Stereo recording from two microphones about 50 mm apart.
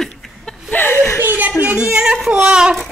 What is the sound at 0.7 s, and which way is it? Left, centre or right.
Speech, left.